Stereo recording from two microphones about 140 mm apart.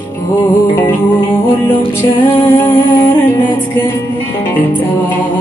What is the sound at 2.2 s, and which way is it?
Music, 15° left (ahead or behind).